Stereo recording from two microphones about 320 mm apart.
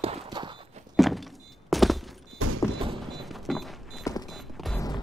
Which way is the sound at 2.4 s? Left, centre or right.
Right.